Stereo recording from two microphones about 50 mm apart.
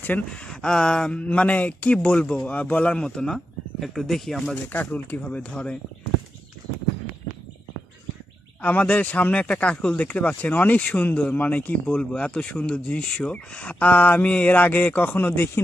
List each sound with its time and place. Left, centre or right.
0.3 s a sound: centre
1.2 s a man's voice: left
3.3 s speech: centre
4.7 s a man's voice: left
8.6 s a man's voice: left
15.3 s speech: left